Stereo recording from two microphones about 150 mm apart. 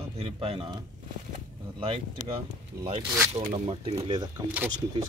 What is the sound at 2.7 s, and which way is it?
Speech, 15° right (ahead or behind).